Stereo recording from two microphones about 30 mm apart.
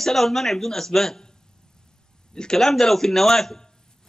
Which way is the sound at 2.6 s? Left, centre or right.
Centre.